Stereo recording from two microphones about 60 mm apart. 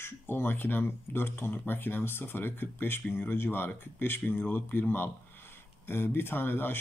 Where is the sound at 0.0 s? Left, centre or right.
Left.